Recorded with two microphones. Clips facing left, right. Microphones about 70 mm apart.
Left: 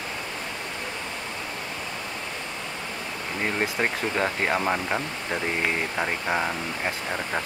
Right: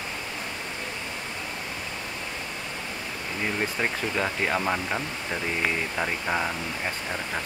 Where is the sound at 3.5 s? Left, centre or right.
Left.